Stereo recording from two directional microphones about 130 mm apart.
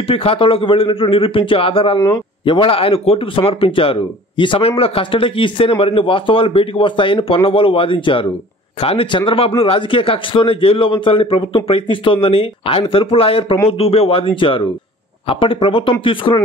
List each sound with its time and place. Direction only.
0.0 s speech: 45° left (ahead or behind)